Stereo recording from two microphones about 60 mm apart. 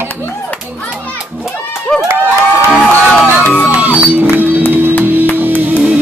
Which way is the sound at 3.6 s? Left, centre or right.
Right.